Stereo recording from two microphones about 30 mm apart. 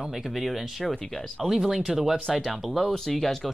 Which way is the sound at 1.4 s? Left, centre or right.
Centre.